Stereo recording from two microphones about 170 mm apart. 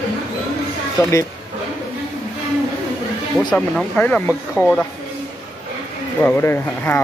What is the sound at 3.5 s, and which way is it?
Speech, 5° left (ahead or behind).